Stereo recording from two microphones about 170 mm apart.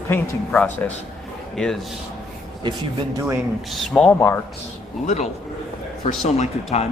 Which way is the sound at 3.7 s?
5° left (ahead or behind).